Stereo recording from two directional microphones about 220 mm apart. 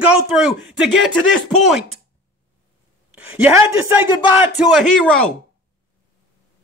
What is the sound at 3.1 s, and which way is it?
A woman's voice, 5° right (ahead or behind).